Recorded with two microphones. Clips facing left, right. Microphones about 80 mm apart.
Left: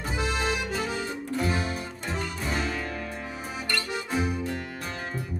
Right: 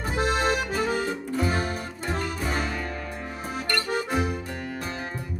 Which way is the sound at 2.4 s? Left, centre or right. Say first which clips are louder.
Even; centre.